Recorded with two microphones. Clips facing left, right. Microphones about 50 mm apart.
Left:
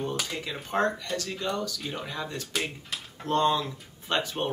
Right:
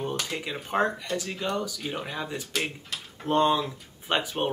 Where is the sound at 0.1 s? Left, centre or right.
Centre.